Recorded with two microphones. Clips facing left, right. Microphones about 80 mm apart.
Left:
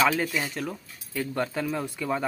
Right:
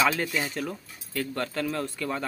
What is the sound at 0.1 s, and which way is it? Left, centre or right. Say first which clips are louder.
Speech: left 1 dB; centre.